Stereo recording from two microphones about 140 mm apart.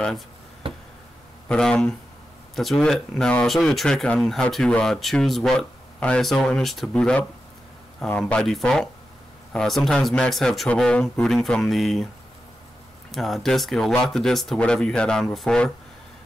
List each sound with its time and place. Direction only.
0.6 s a sound: 40° right (ahead or behind)
1.5 s speech: 5° left (ahead or behind)
13.1 s speech: centre (ahead or behind)